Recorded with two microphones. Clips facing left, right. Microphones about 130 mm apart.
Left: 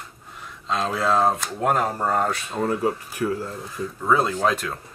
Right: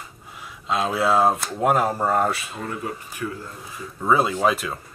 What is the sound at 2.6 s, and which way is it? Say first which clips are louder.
Speech: left 7 dB; 40° left (ahead or behind).